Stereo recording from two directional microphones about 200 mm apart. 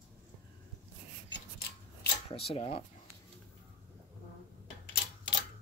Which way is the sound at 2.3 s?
30° left (ahead or behind).